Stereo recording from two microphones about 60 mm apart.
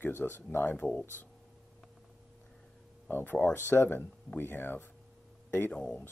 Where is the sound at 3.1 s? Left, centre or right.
Left.